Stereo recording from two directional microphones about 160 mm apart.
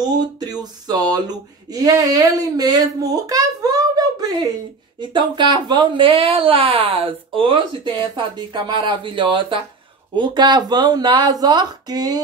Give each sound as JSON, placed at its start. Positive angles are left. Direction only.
{"t": 0.1, "sound": "speech", "side_deg": -25}